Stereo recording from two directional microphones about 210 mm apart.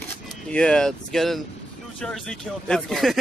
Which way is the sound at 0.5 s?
5° left (ahead or behind).